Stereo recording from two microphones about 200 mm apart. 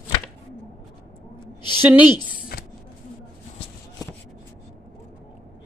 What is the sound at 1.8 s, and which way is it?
Speech, 10° right (ahead or behind).